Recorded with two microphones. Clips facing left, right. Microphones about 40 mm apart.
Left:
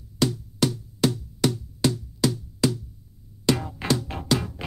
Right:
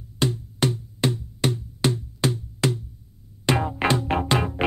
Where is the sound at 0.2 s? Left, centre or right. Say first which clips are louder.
Even; right.